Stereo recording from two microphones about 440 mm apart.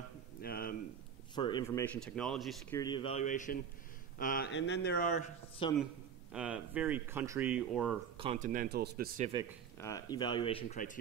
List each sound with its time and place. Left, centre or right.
0.4 s speech: centre
6.3 s speech: centre
8.2 s speech: centre
9.8 s speech: centre